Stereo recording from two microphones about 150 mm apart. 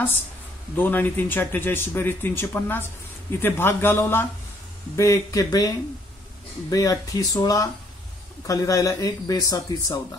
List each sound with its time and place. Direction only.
0.7 s speech: 10° left (ahead or behind)
6.7 s speech: 25° left (ahead or behind)